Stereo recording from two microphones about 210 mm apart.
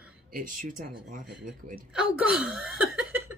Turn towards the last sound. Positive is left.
turn(degrees=-5)  # may be behind; listen again after turning